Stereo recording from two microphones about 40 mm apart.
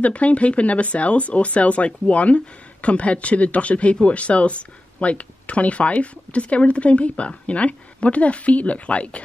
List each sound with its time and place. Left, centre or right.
0.0 s speech: left